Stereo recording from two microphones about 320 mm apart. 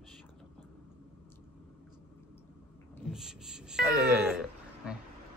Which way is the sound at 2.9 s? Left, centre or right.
Centre.